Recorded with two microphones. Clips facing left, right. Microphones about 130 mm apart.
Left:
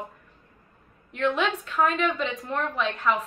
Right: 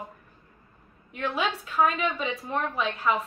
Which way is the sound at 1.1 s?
5° right (ahead or behind).